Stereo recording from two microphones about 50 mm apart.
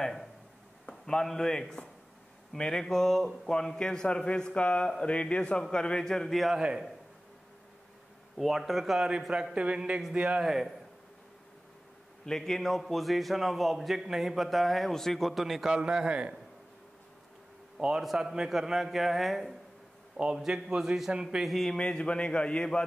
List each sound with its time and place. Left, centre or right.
0.0 s a sound: centre
0.8 s a man's voice: centre
8.4 s a man's voice: centre
9.3 s speech: centre
10.4 s a man's voice: centre
12.3 s a man's voice: centre
15.7 s speech: centre
17.7 s a man's voice: centre
21.5 s a man's voice: centre
21.7 s a man's voice: left